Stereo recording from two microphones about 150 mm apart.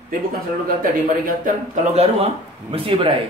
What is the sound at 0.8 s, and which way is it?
Speech, 65° right (ahead or behind).